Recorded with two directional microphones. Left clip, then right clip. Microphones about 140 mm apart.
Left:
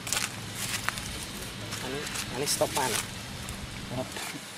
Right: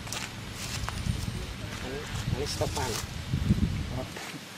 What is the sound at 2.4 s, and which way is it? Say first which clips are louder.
Speech: left 5 dB; 25° left (ahead or behind).